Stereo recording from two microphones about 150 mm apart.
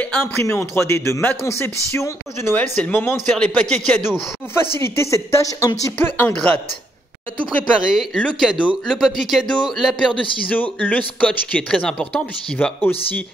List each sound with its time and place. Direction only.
0.0 s speech: 10° left (ahead or behind)
4.8 s speech: 20° left (ahead or behind)
7.9 s a man's voice: centre (ahead or behind)
10.5 s speech: 10° left (ahead or behind)